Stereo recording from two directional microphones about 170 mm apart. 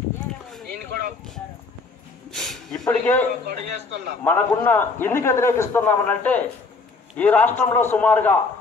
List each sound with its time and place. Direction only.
2.3 s a sound: centre (ahead or behind)
3.4 s a man's voice: 80° right
4.2 s a man's voice: 10° left (ahead or behind)